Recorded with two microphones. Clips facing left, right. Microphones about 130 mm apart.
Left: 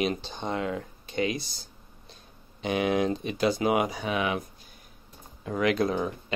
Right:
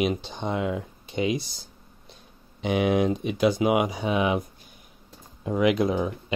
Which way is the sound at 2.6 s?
15° right (ahead or behind).